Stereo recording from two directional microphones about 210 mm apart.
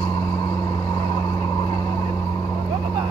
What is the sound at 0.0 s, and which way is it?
Vehicle, 10° left (ahead or behind).